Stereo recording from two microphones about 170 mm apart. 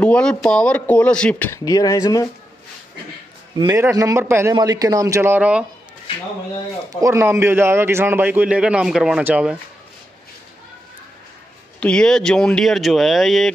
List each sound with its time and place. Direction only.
0.0 s speech: 5° left (ahead or behind)
1.5 s speech: 20° left (ahead or behind)
3.5 s a man's voice: 20° right (ahead or behind)
7.0 s a man's voice: 15° right (ahead or behind)
11.8 s speech: 5° left (ahead or behind)